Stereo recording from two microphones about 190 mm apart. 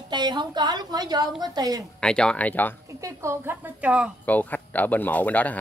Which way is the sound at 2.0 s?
5° left (ahead or behind).